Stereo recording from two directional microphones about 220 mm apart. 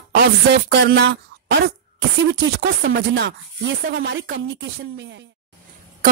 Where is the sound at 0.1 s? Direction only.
50° right (ahead or behind).